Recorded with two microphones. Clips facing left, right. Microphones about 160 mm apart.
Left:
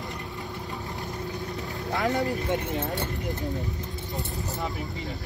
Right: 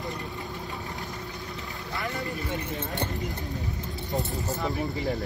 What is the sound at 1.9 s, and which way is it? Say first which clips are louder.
Vehicle: left 8 dB; 65° left (ahead or behind).